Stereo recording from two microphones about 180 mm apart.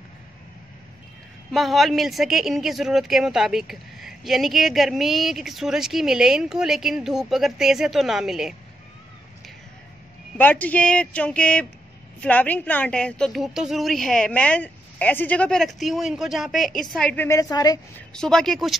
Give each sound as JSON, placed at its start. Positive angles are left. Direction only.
{"t": 1.5, "sound": "speech", "side_deg": 0}
{"t": 10.3, "sound": "speech", "side_deg": 10}
{"t": 17.9, "sound": "speech", "side_deg": 5}